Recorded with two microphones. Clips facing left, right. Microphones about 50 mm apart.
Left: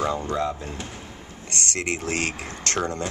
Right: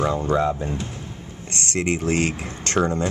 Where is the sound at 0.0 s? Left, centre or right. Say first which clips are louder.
Right 3 dB; centre.